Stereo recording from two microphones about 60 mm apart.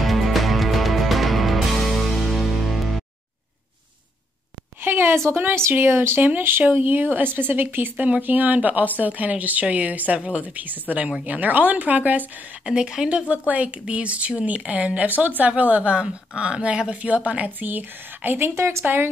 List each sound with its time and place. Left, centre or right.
0.0 s music: centre
4.8 s a sound: right
5.6 s speech: right
12.6 s speech: centre
13.5 s speech: right
18.5 s speech: right